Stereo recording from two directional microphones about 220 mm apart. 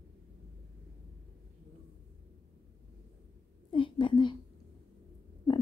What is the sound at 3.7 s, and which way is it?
Speech, 20° left (ahead or behind).